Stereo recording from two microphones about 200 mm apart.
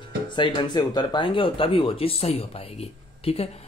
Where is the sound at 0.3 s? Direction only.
20° left (ahead or behind).